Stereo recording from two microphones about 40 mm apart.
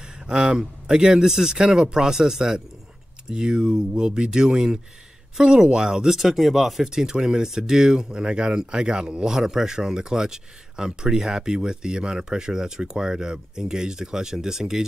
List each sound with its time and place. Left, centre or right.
0.3 s speech: right
6.1 s speech: centre
6.9 s speech: centre